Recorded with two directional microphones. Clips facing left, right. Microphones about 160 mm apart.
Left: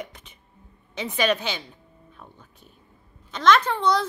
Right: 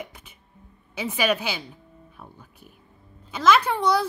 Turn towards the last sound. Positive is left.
turn(degrees=-10)  # may be behind; listen again after turning